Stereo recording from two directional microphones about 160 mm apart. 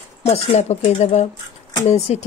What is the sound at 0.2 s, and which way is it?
Speech, 40° left (ahead or behind).